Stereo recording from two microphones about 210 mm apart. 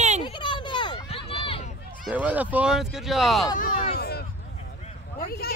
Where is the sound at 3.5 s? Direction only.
40° left (ahead or behind).